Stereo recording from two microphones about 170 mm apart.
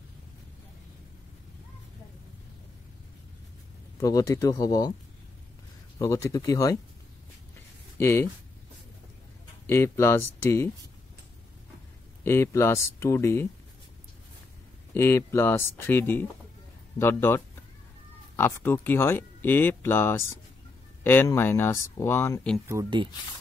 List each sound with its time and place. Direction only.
4.0 s speech: 20° left (ahead or behind)
5.9 s speech: 20° left (ahead or behind)
8.0 s speech: 15° left (ahead or behind)
9.7 s speech: 15° left (ahead or behind)
12.2 s speech: 15° left (ahead or behind)
15.0 s speech: 15° left (ahead or behind)